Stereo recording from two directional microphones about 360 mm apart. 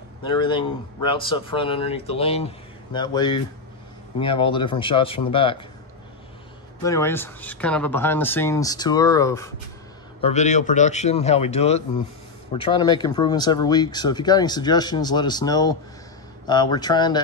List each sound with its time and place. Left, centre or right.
0.2 s speech: centre
6.8 s speech: centre
10.2 s speech: centre